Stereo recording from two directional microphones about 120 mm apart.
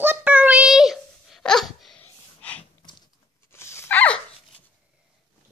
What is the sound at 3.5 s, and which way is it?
Dog, 20° left (ahead or behind).